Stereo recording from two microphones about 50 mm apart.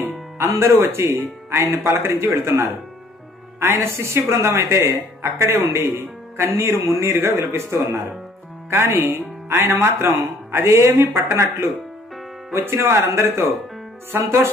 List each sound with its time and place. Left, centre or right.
0.0 s speech: right
3.8 s speech: right
7.2 s speech: right
8.6 s speech: right
12.6 s speech: right